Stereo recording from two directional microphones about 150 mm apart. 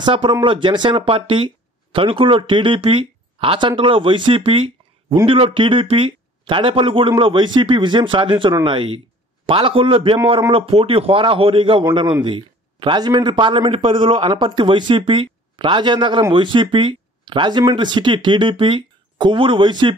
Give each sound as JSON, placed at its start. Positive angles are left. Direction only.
{"t": 0.0, "sound": "a man's voice", "side_deg": -35}